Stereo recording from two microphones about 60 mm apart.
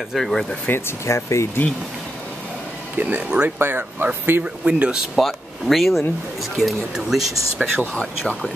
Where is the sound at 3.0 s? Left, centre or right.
Right.